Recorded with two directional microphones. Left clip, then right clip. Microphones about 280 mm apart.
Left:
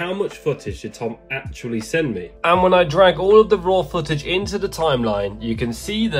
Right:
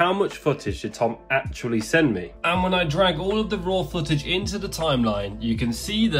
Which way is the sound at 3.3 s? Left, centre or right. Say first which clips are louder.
Left 13 dB; centre.